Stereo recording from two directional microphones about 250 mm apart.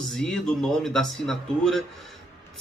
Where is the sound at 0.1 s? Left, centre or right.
Centre.